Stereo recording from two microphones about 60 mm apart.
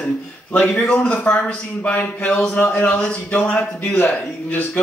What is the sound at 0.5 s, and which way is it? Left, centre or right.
A man's voice, left.